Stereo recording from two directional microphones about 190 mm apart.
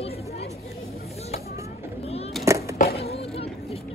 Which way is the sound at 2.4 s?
15° right (ahead or behind).